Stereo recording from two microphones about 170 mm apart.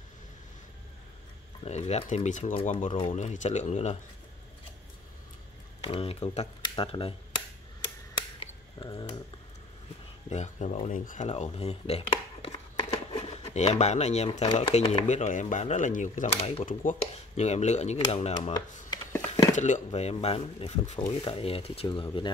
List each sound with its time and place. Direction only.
1.6 s speech: 40° left (ahead or behind)
2.9 s speech: 35° left (ahead or behind)
5.9 s speech: 35° left (ahead or behind)
8.7 s speech: 30° left (ahead or behind)
10.3 s speech: 40° left (ahead or behind)